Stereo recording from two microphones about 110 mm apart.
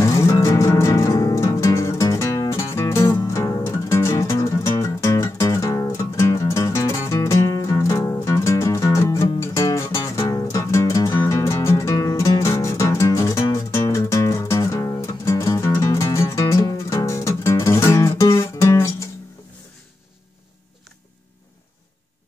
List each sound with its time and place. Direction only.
0.0 s music: 30° left (ahead or behind)